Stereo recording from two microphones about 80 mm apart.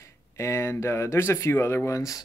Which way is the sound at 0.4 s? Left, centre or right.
Left.